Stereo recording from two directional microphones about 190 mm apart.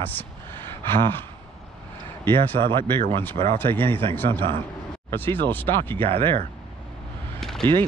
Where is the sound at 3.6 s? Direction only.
10° left (ahead or behind).